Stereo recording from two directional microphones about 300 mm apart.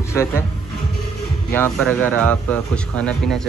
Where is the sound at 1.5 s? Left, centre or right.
Centre.